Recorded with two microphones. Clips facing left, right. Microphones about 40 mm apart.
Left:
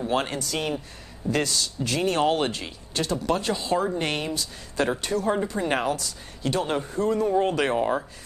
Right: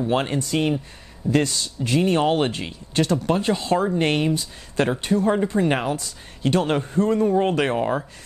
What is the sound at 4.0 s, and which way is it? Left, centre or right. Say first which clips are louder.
Speech: right 6 dB; right.